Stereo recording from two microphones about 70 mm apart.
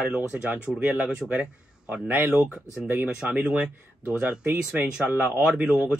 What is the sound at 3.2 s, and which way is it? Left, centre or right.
Speech, centre.